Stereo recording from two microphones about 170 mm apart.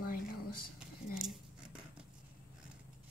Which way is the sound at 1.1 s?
5° right (ahead or behind).